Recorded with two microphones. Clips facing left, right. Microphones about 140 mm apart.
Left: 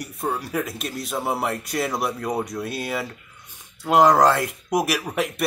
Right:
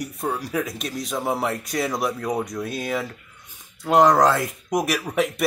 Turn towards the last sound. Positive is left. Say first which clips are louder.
# right 2 dB
turn(degrees=0)  # may be behind; listen again after turning